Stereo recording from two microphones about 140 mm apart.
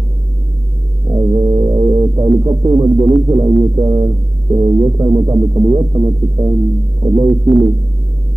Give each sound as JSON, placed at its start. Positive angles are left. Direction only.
{"t": 1.1, "sound": "music", "side_deg": -25}